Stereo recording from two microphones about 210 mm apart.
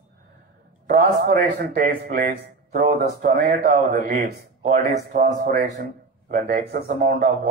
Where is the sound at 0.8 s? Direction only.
45° right (ahead or behind).